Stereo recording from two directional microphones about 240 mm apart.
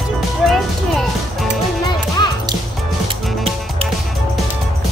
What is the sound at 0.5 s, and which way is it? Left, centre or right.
Music, centre.